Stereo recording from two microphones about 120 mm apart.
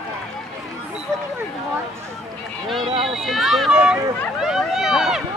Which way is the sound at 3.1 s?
Centre (ahead or behind).